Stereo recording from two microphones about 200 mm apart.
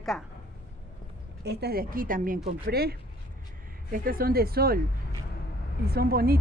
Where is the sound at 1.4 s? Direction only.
55° right (ahead or behind).